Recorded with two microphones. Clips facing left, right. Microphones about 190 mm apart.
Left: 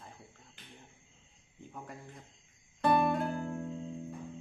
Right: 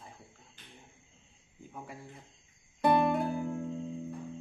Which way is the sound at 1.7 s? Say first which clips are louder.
Right 1 dB; 5° right (ahead or behind).